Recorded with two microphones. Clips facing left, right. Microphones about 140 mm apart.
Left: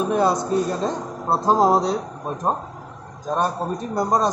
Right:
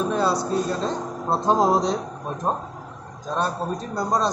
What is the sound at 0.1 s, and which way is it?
Speech, 20° left (ahead or behind).